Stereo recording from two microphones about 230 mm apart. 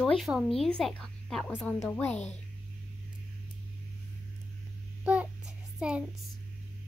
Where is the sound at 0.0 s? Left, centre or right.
Centre.